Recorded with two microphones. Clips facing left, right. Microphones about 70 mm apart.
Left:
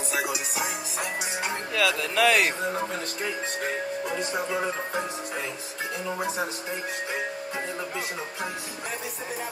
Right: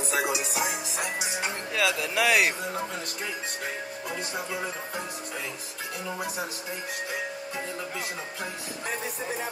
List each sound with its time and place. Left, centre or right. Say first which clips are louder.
0.3 s music: right 1 dB; centre
1.8 s speech: left 2 dB; centre
6.1 s speech: left 4 dB; left